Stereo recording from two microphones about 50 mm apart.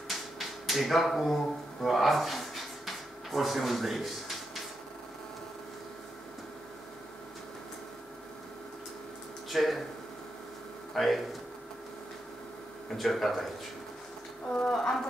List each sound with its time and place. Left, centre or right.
0.1 s a sound: centre
9.5 s speech: centre
10.9 s speech: centre
12.9 s speech: centre
14.7 s speech: centre